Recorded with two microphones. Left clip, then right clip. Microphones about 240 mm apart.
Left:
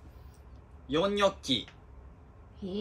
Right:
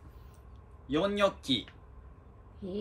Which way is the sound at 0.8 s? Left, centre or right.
Centre.